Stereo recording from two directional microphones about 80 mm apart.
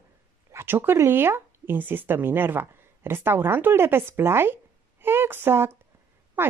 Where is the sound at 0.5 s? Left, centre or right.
Right.